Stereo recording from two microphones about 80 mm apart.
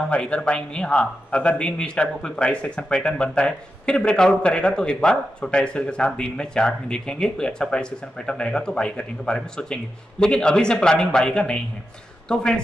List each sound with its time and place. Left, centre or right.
0.1 s a man's voice: centre